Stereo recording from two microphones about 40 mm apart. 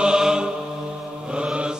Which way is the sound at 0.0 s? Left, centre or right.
Centre.